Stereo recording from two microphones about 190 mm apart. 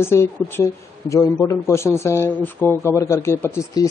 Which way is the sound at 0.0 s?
15° left (ahead or behind).